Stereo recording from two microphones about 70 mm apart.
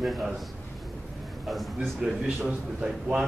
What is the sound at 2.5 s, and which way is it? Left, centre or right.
Speech, centre.